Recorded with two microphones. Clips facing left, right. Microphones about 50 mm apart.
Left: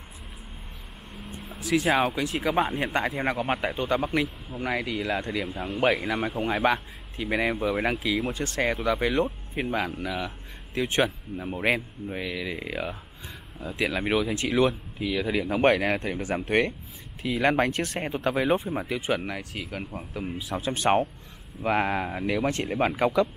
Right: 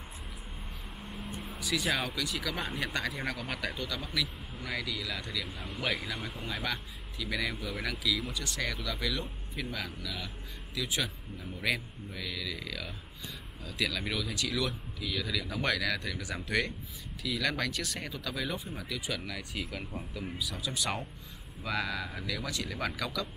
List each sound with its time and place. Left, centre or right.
1.1 s vehicle: centre
1.6 s a sound: left
2.0 s speech: left
5.6 s speech: left
19.7 s speech: left
20.3 s speech: left